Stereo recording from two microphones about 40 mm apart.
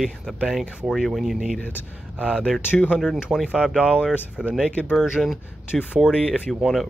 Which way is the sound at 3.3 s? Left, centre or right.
Right.